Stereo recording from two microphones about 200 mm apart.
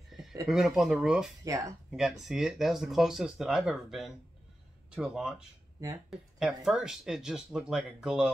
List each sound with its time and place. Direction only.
0.1 s a sound: centre (ahead or behind)
0.5 s speech: centre (ahead or behind)
1.4 s speech: 15° right (ahead or behind)
1.9 s speech: centre (ahead or behind)